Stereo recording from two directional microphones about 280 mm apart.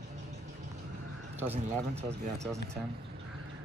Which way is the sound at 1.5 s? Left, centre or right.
Right.